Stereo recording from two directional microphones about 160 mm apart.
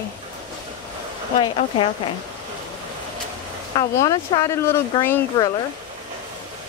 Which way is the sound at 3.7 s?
25° left (ahead or behind).